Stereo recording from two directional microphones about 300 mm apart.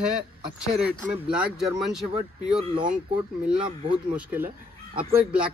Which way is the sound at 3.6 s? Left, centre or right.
Centre.